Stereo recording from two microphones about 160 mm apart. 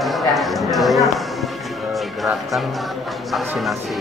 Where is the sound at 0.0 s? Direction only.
Centre (ahead or behind).